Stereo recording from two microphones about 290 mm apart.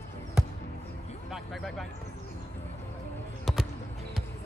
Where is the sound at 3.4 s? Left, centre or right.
Centre.